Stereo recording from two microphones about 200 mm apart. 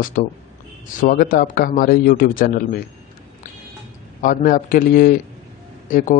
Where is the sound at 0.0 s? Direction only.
40° left (ahead or behind).